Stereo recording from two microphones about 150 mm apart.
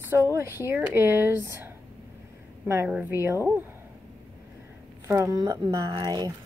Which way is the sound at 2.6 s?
15° right (ahead or behind).